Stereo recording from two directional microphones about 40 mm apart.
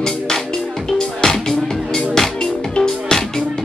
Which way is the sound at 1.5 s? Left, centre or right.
Centre.